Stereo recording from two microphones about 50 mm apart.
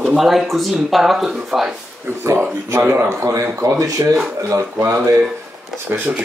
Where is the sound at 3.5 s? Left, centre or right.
Right.